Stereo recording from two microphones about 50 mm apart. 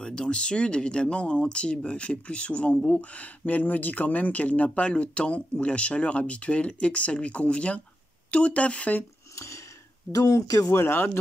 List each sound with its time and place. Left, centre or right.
0.0 s speech: centre
9.3 s a sound: left
10.7 s speech: left